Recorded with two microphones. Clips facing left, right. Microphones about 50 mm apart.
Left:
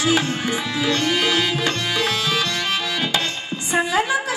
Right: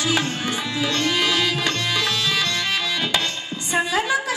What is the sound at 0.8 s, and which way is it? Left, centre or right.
Music, left.